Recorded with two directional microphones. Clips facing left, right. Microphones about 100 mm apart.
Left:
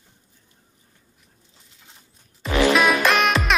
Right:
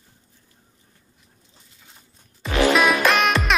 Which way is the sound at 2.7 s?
Centre (ahead or behind).